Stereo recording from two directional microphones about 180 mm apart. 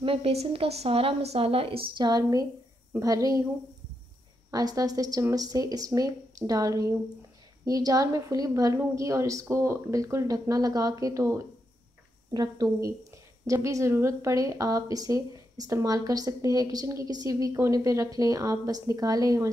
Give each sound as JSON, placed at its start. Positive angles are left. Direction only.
{"t": 0.0, "sound": "a woman's voice", "side_deg": -30}
{"t": 4.5, "sound": "a woman's voice", "side_deg": -20}